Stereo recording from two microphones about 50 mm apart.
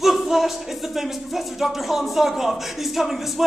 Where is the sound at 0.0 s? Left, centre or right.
Centre.